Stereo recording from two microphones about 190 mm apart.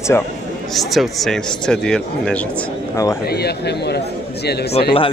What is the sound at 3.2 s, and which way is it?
A man's voice, 55° left (ahead or behind).